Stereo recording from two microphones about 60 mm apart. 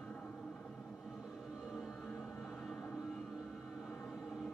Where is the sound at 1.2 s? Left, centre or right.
Centre.